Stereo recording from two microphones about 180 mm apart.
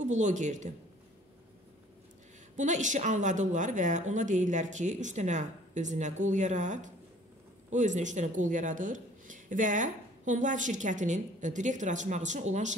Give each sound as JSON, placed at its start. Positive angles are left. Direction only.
{"t": 0.0, "sound": "speech", "side_deg": -40}
{"t": 2.5, "sound": "speech", "side_deg": -45}